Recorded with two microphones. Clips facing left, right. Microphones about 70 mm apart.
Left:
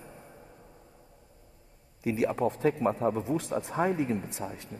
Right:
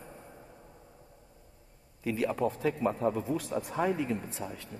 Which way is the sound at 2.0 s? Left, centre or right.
Centre.